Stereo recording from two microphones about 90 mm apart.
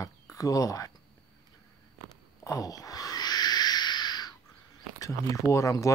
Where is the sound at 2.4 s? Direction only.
40° left (ahead or behind).